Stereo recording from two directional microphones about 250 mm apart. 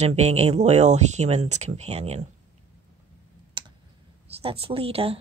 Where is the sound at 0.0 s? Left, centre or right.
Right.